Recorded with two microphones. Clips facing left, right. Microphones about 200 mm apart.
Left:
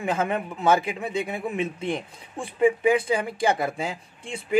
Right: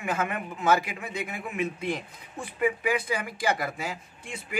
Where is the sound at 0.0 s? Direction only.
30° left (ahead or behind).